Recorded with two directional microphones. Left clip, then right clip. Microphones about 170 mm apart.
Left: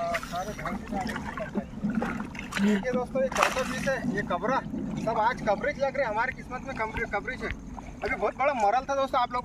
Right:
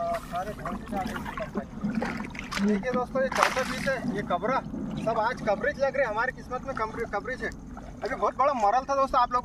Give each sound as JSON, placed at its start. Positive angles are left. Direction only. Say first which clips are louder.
{"t": 1.9, "sound": "a sound", "louder": "even", "side_deg": 30}
{"t": 2.9, "sound": "speech", "louder": "right 2 dB", "side_deg": 20}
{"t": 3.3, "sound": "speech", "louder": "right 1 dB", "side_deg": 30}
{"t": 3.5, "sound": "speech", "louder": "right 1 dB", "side_deg": 20}
{"t": 3.9, "sound": "speech", "louder": "even", "side_deg": 5}